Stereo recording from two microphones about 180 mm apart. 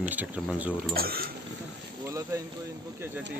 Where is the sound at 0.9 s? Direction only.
55° right (ahead or behind).